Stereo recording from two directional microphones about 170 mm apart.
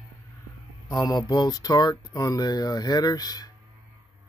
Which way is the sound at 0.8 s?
25° left (ahead or behind).